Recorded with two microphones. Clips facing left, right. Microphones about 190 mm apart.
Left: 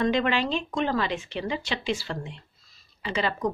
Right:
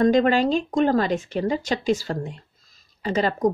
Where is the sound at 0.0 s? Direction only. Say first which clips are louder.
Right 7 dB; 40° right (ahead or behind).